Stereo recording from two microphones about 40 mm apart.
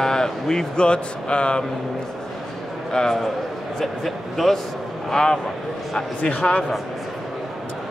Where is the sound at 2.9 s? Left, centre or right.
Centre.